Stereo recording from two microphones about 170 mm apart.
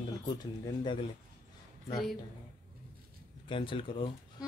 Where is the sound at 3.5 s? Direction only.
30° left (ahead or behind).